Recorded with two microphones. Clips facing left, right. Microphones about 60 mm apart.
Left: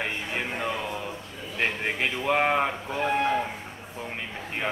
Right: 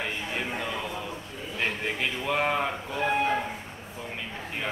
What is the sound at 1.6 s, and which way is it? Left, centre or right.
A man's voice, left.